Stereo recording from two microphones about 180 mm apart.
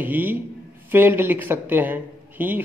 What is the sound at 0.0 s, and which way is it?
Speech, 10° right (ahead or behind).